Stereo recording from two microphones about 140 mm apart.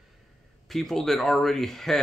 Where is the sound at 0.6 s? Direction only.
Centre (ahead or behind).